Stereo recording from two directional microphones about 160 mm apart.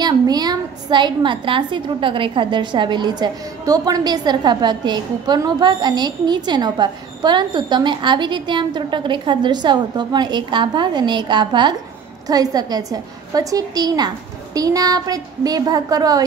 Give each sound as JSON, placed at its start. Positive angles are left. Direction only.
{"t": 0.0, "sound": "a woman's voice", "side_deg": -25}